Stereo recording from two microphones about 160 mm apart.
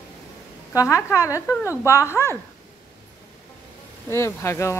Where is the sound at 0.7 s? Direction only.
20° left (ahead or behind).